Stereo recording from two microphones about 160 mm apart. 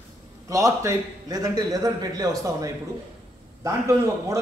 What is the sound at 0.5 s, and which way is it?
A man's voice, 20° right (ahead or behind).